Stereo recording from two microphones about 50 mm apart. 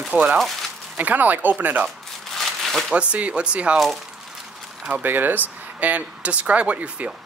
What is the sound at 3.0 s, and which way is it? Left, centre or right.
Speech, right.